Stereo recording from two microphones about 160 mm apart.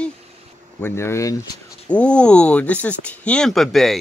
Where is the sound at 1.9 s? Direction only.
5° left (ahead or behind).